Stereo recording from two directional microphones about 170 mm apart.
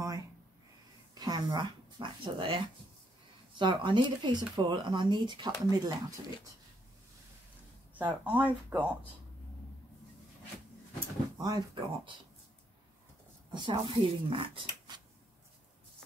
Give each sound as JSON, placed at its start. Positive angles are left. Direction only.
{"t": 1.1, "sound": "speech", "side_deg": -25}
{"t": 7.9, "sound": "speech", "side_deg": -10}
{"t": 11.3, "sound": "speech", "side_deg": -20}
{"t": 13.5, "sound": "speech", "side_deg": -25}